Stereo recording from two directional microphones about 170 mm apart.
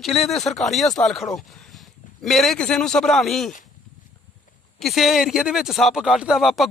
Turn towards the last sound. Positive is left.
turn(degrees=0)  # may be behind; listen again after turning